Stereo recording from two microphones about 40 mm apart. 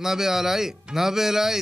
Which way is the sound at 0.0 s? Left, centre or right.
Centre.